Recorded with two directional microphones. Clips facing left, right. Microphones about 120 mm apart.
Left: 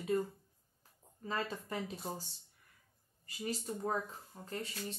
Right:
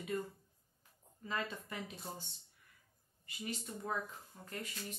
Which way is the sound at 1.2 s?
35° left (ahead or behind).